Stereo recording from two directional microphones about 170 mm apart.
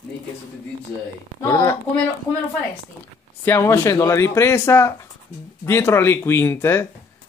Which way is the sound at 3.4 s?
15° left (ahead or behind).